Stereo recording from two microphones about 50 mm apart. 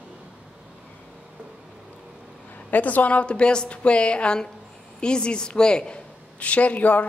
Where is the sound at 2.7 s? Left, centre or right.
Left.